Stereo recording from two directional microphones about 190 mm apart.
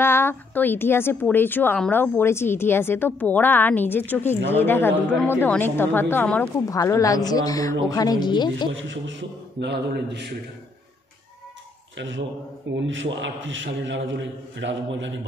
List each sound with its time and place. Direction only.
0.0 s a woman's voice: 10° left (ahead or behind)
6.7 s speech: 15° left (ahead or behind)
8.7 s a man's voice: 80° right; by 10.2 s 65° right (ahead or behind)
12.7 s a man's voice: 75° right (ahead or behind)